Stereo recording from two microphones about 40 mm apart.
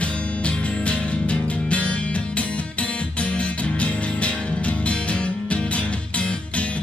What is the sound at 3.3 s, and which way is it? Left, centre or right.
Music, left.